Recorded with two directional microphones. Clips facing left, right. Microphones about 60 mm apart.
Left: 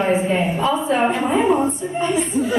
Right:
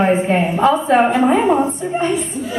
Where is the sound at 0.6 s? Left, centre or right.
Right.